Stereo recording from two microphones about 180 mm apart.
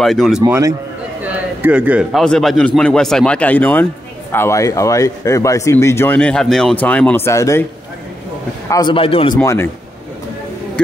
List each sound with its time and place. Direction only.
0.0 s a man's voice: centre (ahead or behind)
0.4 s a man's voice: 20° right (ahead or behind)
1.2 s a man's voice: 10° right (ahead or behind); by 7.6 s 15° left (ahead or behind)
8.6 s a man's voice: 20° left (ahead or behind)
9.4 s speech: 15° left (ahead or behind)